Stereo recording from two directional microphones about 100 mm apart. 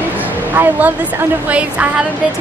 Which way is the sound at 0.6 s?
20° right (ahead or behind).